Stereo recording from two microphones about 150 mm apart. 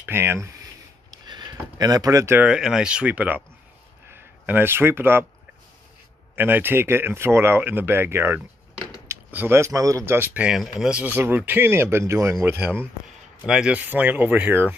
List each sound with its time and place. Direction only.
0.0 s speech: 15° right (ahead or behind)
1.1 s a sound: 30° right (ahead or behind)
2.4 s speech: 5° right (ahead or behind)
6.3 s speech: 15° right (ahead or behind)